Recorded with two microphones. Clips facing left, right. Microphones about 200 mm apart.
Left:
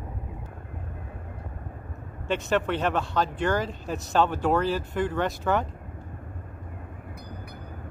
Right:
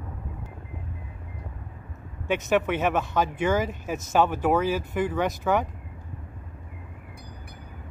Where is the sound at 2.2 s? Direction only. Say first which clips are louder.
Right 2 dB; 15° right (ahead or behind).